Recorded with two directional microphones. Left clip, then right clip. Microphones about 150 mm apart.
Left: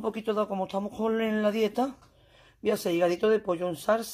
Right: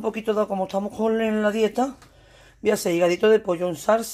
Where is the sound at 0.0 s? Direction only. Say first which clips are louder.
Right 5 dB; 5° left (ahead or behind).